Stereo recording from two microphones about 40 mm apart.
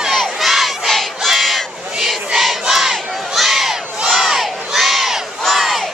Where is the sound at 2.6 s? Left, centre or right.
Centre.